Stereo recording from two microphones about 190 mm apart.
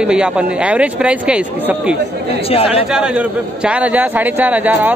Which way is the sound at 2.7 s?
5° right (ahead or behind).